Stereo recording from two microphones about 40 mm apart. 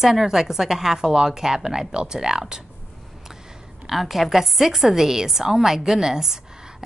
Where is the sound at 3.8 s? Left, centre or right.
Centre.